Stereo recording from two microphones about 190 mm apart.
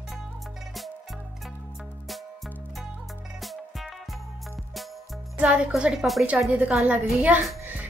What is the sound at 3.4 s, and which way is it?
Music, centre (ahead or behind).